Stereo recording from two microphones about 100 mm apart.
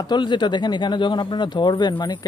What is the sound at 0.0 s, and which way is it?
Speech, 45° left (ahead or behind).